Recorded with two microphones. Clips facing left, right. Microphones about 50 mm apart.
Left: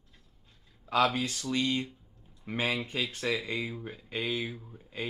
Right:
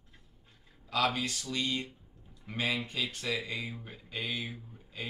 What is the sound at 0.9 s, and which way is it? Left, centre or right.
Speech, left.